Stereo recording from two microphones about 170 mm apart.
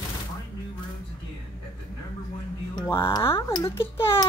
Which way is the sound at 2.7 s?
15° left (ahead or behind).